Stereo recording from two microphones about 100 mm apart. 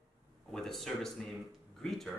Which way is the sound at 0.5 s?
5° left (ahead or behind).